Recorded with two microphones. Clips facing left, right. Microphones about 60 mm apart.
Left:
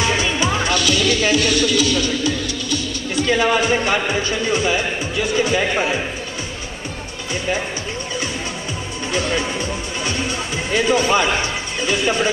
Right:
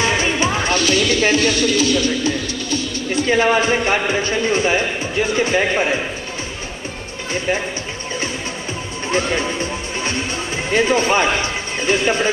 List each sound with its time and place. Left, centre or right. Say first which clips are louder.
0.2 s speech: right 1 dB; right
9.1 s music: right 2 dB; right